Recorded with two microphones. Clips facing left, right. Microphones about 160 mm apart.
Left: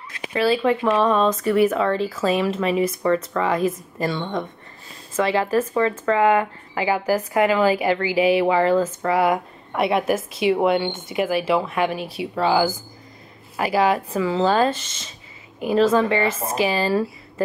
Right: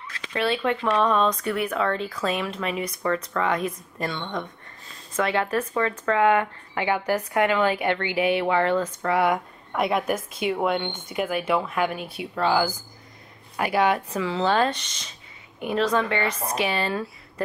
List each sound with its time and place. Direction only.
0.3 s a woman's voice: 5° left (ahead or behind)